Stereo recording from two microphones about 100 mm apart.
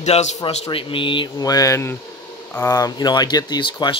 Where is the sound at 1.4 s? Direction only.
35° left (ahead or behind).